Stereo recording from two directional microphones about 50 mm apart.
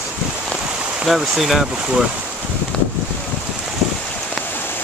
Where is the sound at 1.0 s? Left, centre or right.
Centre.